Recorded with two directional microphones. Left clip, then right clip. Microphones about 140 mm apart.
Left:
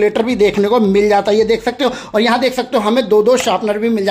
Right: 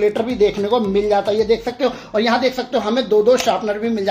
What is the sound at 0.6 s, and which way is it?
Speech, 55° left (ahead or behind).